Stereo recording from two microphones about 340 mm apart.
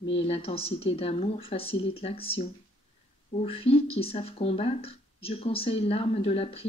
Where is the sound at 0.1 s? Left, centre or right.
Centre.